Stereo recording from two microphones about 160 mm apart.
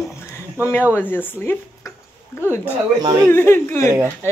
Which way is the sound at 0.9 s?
10° left (ahead or behind).